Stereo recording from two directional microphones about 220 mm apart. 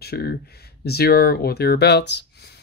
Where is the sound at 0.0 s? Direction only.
45° left (ahead or behind).